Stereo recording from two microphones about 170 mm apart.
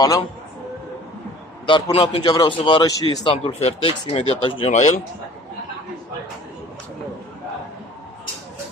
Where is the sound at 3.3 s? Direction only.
35° left (ahead or behind).